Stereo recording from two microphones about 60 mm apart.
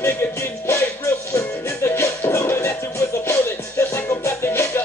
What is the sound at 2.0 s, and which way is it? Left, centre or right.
Music, left.